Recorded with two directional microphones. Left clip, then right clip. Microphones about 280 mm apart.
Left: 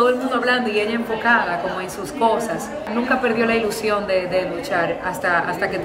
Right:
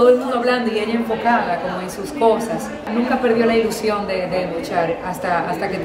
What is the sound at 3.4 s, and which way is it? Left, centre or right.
Speech, centre.